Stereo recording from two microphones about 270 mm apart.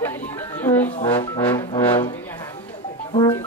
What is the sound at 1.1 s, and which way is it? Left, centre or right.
Brass instrument, centre.